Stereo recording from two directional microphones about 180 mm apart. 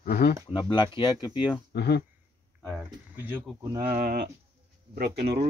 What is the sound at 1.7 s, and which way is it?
Speech, 65° left (ahead or behind).